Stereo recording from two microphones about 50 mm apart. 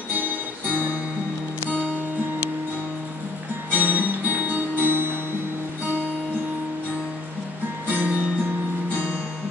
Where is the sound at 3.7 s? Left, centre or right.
Right.